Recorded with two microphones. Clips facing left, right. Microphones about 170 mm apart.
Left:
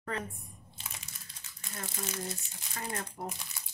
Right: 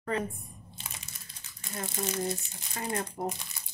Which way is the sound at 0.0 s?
20° right (ahead or behind).